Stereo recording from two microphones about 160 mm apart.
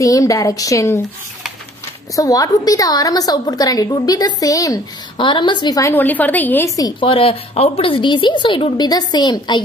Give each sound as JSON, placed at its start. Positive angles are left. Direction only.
{"t": 0.0, "sound": "a woman's voice", "side_deg": 20}
{"t": 2.1, "sound": "a woman's voice", "side_deg": 20}
{"t": 6.8, "sound": "a woman's voice", "side_deg": 35}